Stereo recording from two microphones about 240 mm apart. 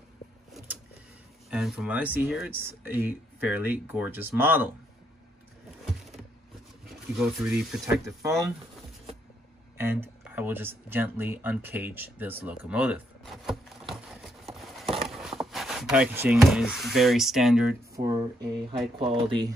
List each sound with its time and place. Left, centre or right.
1.5 s speech: centre
7.2 s speech: centre
9.8 s speech: centre
17.9 s speech: centre